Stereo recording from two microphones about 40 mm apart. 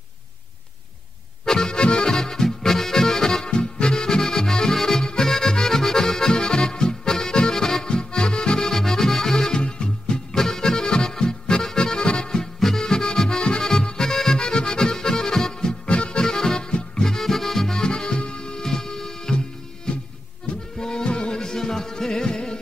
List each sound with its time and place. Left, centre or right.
1.4 s accordion: centre
3.5 s music: left
3.9 s accordion: centre
5.0 s music: centre
5.3 s accordion: centre
9.6 s music: left
10.3 s music: centre
11.6 s accordion: centre
12.5 s music: centre
15.9 s accordion: left
16.9 s music: centre
17.2 s accordion: centre; by 18.6 s left
18.6 s music: centre